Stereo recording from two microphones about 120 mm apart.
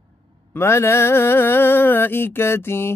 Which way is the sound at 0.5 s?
20° left (ahead or behind).